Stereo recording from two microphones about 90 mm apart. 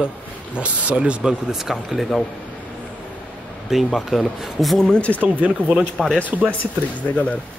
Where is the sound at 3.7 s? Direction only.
5° right (ahead or behind).